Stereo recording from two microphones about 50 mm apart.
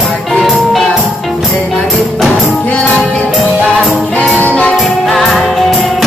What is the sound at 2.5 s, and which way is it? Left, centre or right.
Music, left.